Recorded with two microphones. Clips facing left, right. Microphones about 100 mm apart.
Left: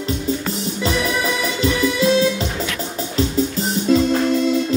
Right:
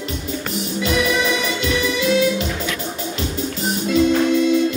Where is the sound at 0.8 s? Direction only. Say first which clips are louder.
Right 1 dB; 35° left (ahead or behind).